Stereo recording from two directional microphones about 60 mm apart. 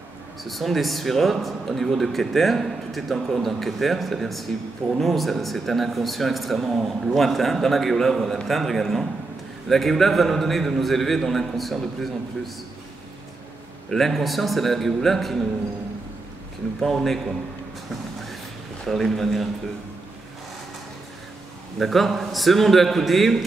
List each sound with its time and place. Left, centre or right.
0.4 s a man's voice: centre
13.8 s a man's voice: centre
16.8 s a man's voice: centre
18.9 s a man's voice: centre
21.7 s a man's voice: centre